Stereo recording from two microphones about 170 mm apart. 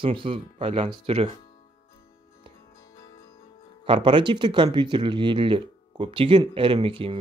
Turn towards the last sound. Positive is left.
turn(degrees=-30)  # may be behind; listen again after turning